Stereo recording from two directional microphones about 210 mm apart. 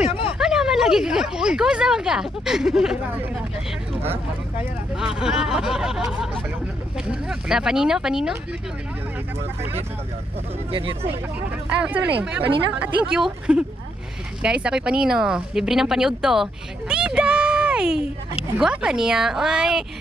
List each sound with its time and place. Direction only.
0.4 s speech: 5° right (ahead or behind)
4.9 s speech: centre (ahead or behind)
7.1 s speech: 5° right (ahead or behind)
10.7 s speech: 25° right (ahead or behind)
11.8 s speech: 5° right (ahead or behind)